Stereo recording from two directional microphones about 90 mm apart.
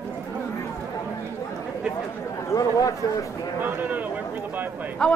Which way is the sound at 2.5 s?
40° left (ahead or behind).